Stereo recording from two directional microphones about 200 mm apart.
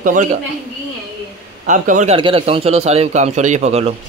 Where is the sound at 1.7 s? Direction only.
40° right (ahead or behind).